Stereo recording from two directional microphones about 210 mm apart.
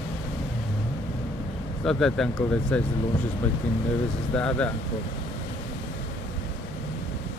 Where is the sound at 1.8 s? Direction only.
Centre (ahead or behind).